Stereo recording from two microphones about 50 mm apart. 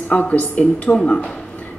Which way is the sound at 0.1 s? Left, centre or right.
Left.